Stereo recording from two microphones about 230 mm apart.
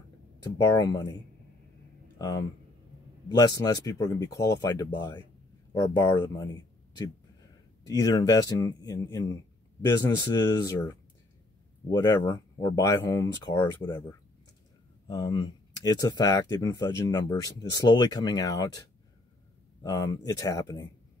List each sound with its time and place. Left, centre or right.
0.4 s speech: centre
2.1 s speech: centre
8.0 s speech: centre
15.0 s speech: centre
19.8 s speech: centre